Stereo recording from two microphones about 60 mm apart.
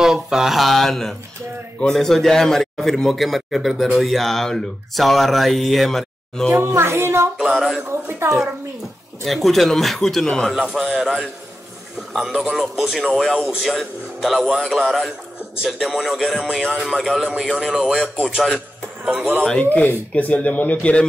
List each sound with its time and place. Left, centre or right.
0.0 s a man's voice: centre
6.7 s speech: right
7.5 s a man's voice: centre
7.9 s speech: right
9.2 s a man's voice: centre
10.5 s speech: centre
10.8 s a man's voice: centre
19.6 s speech: left